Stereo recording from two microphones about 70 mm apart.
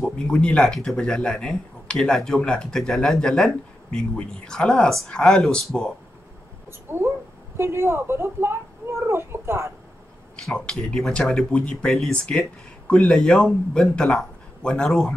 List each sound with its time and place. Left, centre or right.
0.0 s speech: centre
6.9 s a woman's voice: right
9.0 s a sound: right
10.5 s speech: centre